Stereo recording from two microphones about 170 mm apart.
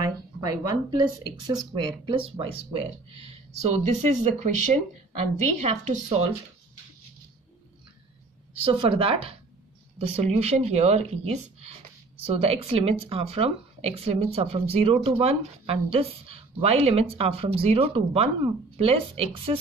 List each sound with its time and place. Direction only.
0.0 s a sound: 20° right (ahead or behind)
1.7 s speech: 25° right (ahead or behind)
3.6 s speech: 40° right (ahead or behind)
8.6 s speech: 30° right (ahead or behind)